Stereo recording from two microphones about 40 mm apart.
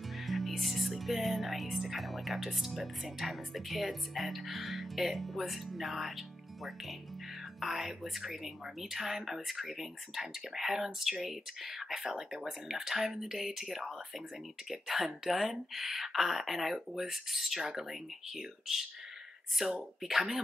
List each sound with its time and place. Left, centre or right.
0.3 s speech: centre